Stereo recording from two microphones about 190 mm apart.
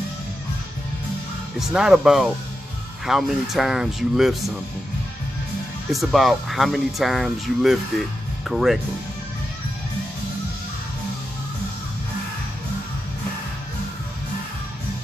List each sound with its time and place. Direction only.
1.6 s speech: 5° right (ahead or behind)
5.9 s speech: centre (ahead or behind)